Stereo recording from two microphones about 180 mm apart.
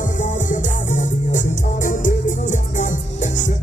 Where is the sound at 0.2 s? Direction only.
45° left (ahead or behind).